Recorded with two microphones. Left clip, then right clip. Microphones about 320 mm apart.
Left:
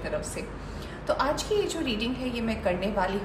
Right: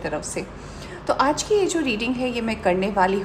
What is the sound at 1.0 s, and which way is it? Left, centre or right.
A woman's voice, right.